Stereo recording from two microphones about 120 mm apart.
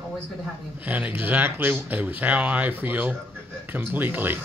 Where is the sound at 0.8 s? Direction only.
15° right (ahead or behind).